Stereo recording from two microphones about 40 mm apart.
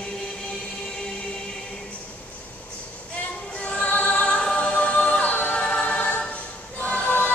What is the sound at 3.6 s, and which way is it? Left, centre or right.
Music, left.